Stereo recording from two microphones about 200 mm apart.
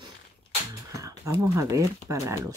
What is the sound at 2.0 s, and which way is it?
Speech, 15° right (ahead or behind).